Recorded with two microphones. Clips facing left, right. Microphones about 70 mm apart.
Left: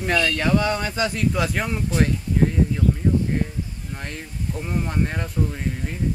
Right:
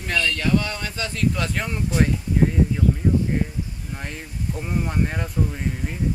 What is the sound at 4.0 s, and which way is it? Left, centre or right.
Speech, centre.